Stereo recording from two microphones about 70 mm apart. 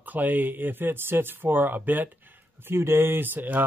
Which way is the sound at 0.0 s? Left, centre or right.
Right.